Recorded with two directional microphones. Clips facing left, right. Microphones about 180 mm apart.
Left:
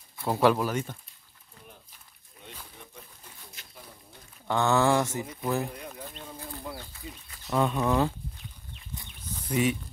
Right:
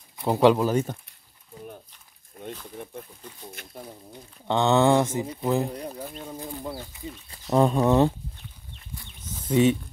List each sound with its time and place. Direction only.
0.2 s speech: 20° right (ahead or behind)
2.4 s a sound: 50° right (ahead or behind)
3.6 s a sound: 55° right (ahead or behind)
4.5 s speech: 20° right (ahead or behind)
5.2 s speech: 30° right (ahead or behind)
5.7 s a sound: 35° right (ahead or behind)
6.0 s speech: 15° right (ahead or behind)
7.2 s speech: 35° right (ahead or behind)
9.5 s speech: 25° right (ahead or behind)